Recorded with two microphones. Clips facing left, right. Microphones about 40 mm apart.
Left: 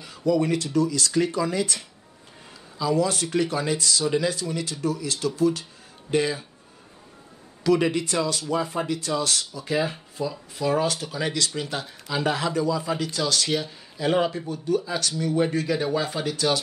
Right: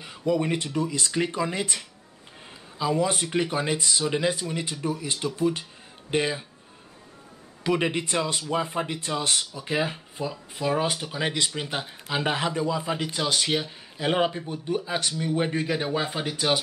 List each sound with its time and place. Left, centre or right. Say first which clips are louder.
0.0 s speech: left 3 dB; right
2.8 s speech: left 1 dB; right
7.6 s speech: left 4 dB; right